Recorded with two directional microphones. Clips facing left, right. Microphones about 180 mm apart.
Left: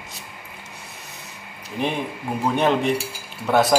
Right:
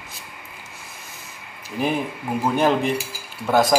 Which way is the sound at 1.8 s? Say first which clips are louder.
Right 2 dB; 5° right (ahead or behind).